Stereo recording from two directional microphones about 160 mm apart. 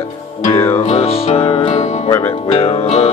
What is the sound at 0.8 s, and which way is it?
Speech, 40° left (ahead or behind).